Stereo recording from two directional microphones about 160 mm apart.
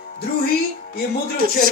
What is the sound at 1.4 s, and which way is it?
Speech, 65° right (ahead or behind).